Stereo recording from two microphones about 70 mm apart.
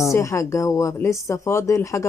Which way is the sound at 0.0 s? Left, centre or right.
Left.